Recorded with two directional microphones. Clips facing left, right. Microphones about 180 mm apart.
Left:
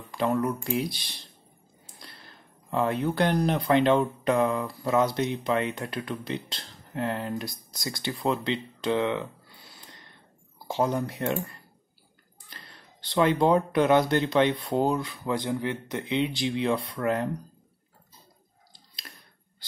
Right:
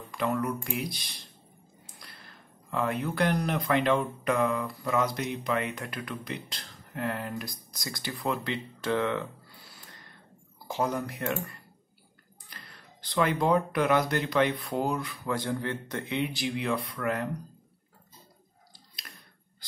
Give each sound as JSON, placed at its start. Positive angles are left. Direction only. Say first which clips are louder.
{"t": 0.1, "sound": "speech", "louder": "left 3 dB", "side_deg": 30}
{"t": 12.4, "sound": "speech", "louder": "left 1 dB", "side_deg": 30}
{"t": 19.0, "sound": "a sound", "louder": "left 2 dB", "side_deg": 25}